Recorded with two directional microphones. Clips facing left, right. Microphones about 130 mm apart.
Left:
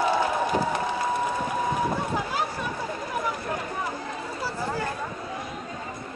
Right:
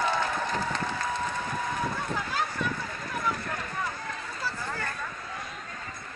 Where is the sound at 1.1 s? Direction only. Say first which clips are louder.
Left 5 dB; 10° left (ahead or behind).